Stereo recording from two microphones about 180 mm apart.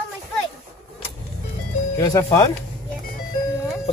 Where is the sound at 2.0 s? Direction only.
15° left (ahead or behind).